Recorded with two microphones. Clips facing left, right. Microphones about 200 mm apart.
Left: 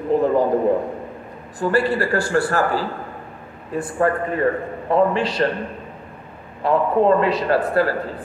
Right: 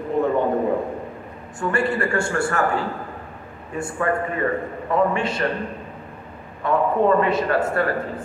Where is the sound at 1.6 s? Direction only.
35° left (ahead or behind).